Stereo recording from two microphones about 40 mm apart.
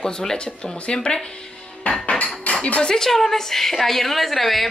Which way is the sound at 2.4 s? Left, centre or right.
Left.